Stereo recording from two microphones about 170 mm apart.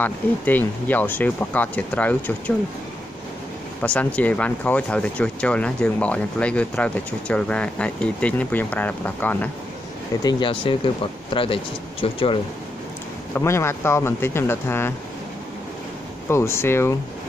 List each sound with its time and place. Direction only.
0.0 s speech: 10° left (ahead or behind)
3.8 s speech: 5° left (ahead or behind)
10.2 s speech: 30° left (ahead or behind)
13.3 s speech: 15° left (ahead or behind)
16.3 s speech: 15° left (ahead or behind)